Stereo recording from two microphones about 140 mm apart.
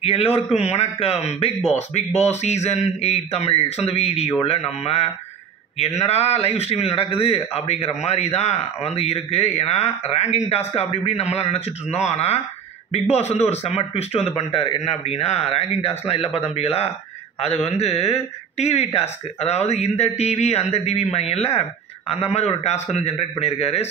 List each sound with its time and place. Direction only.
0.0 s a man's voice: 45° left (ahead or behind)
6.0 s a man's voice: 45° left (ahead or behind)